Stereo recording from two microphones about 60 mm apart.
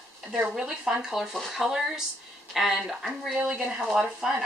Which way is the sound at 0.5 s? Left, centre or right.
Centre.